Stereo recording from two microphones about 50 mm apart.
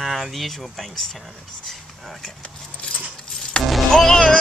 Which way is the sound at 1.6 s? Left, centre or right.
Centre.